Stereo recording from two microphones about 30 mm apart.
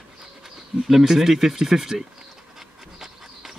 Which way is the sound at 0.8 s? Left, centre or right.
Centre.